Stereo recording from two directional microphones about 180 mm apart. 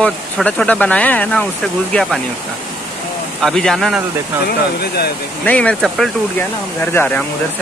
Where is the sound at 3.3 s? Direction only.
5° left (ahead or behind).